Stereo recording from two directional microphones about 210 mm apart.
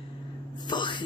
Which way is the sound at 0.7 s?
20° left (ahead or behind).